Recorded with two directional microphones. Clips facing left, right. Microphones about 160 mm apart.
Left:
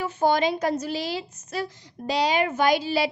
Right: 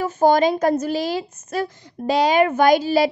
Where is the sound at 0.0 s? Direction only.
45° right (ahead or behind).